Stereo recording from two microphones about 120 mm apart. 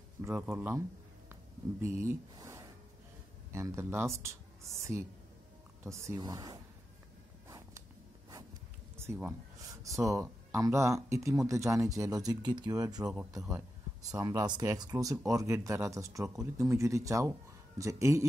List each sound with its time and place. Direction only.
0.2 s speech: 20° right (ahead or behind)
1.3 s a sound: 25° right (ahead or behind)
3.5 s speech: 20° right (ahead or behind)
5.9 s speech: 30° right (ahead or behind)
7.4 s a sound: 25° right (ahead or behind)
8.9 s speech: 20° right (ahead or behind)
14.1 s speech: 30° right (ahead or behind)